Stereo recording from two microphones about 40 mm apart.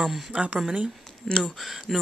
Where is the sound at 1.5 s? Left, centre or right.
Centre.